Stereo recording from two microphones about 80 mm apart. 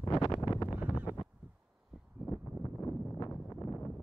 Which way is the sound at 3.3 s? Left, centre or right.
Centre.